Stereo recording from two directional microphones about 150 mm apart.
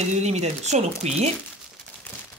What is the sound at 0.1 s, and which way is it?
Speech, 45° right (ahead or behind).